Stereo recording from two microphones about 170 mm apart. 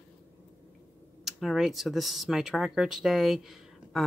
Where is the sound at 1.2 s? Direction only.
Centre (ahead or behind).